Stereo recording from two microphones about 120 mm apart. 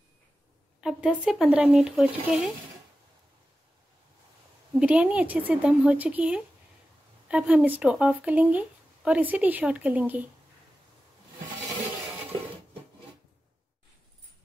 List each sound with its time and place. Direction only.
0.7 s speech: 5° right (ahead or behind)
4.7 s a woman's voice: 10° right (ahead or behind)